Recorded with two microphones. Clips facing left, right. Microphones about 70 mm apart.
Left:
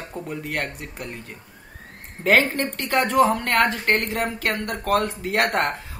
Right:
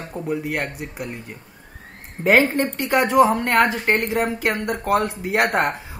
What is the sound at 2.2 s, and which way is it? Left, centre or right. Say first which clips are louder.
Speech: right 3 dB; centre.